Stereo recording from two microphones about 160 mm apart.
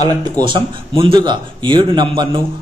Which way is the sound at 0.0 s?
25° right (ahead or behind).